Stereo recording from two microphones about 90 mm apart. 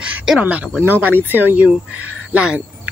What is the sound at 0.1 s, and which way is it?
Speech, 10° right (ahead or behind).